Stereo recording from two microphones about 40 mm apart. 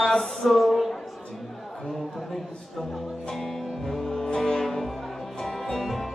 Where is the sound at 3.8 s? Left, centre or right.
Centre.